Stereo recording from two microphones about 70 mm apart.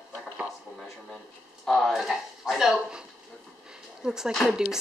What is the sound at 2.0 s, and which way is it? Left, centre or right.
A woman's voice, centre.